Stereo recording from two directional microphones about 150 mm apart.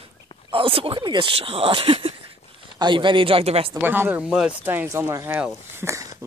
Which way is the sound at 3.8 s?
15° right (ahead or behind).